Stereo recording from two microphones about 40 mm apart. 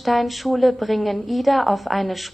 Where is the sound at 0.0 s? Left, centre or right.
Centre.